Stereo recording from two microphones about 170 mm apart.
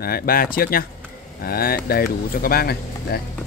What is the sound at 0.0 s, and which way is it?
Speech, 60° left (ahead or behind).